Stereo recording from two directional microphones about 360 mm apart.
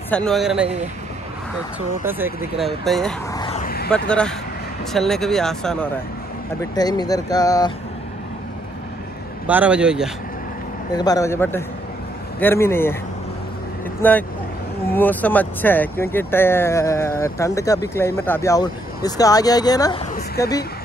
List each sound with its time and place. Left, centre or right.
0.1 s speech: centre
2.0 s speech: centre
3.4 s vehicle: left
4.9 s speech: centre
9.5 s speech: centre
10.9 s speech: centre
14.0 s speech: centre